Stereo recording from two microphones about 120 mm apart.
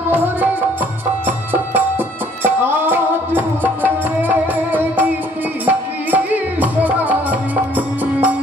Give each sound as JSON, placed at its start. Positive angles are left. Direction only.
{"t": 0.1, "sound": "music", "side_deg": -15}